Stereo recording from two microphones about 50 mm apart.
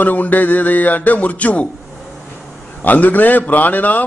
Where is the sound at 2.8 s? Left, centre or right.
Left.